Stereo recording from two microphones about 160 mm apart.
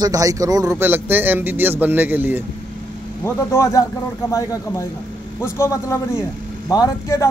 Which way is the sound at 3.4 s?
15° left (ahead or behind).